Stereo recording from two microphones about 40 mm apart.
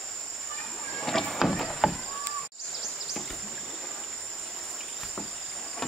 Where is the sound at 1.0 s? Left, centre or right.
Centre.